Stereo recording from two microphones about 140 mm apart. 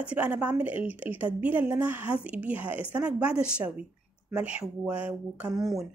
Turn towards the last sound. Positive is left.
turn(degrees=0)  # may be behind; listen again after turning